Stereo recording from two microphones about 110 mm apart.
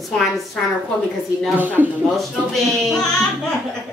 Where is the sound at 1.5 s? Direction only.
15° right (ahead or behind).